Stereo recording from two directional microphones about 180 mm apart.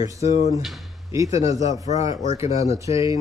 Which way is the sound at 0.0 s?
20° right (ahead or behind).